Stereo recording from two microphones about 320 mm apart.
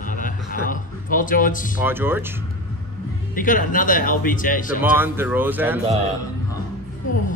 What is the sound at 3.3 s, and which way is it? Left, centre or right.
Speech, left.